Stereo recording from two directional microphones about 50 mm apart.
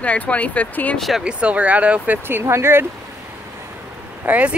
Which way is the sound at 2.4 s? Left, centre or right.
Right.